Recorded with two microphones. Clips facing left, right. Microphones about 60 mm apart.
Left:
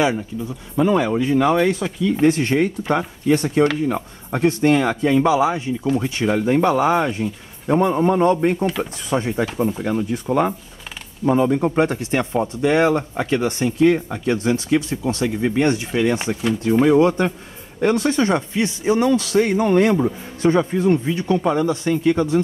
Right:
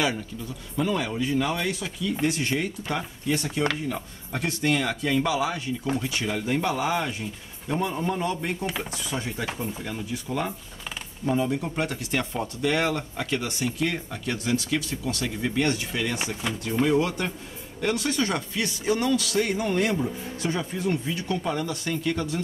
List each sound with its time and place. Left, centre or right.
0.7 s speech: left